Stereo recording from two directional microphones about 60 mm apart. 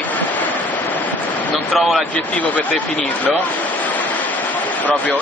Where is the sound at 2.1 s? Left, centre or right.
Left.